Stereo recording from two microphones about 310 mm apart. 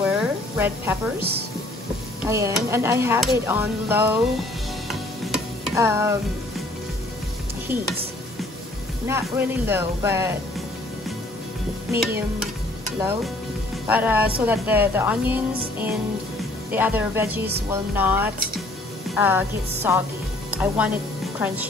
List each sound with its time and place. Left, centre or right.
0.0 s a sound: centre
2.2 s speech: centre
4.8 s stir: centre
9.0 s speech: centre
11.9 s a woman's voice: centre
16.7 s a woman's voice: centre